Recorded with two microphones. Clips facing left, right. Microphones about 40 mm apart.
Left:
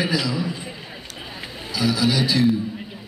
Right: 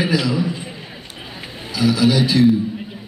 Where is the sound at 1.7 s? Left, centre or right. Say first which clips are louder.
Right 5 dB; right.